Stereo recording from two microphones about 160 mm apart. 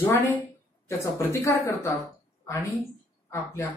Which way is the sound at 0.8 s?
20° left (ahead or behind).